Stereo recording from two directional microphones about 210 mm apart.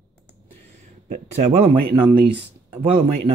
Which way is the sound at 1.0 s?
35° right (ahead or behind).